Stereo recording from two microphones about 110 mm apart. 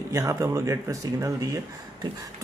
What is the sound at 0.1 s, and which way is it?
Speech, 30° right (ahead or behind).